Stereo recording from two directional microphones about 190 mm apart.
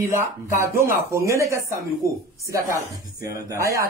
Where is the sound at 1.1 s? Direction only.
15° right (ahead or behind).